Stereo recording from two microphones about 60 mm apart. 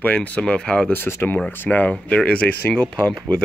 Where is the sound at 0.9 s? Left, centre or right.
Left.